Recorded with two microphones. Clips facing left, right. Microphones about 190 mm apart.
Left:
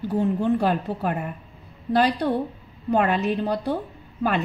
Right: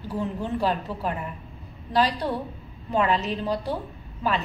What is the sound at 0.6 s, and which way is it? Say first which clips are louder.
A woman's voice: left 3 dB; 55° left (ahead or behind).